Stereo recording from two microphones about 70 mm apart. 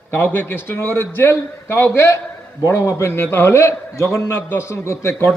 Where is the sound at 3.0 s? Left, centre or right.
Left.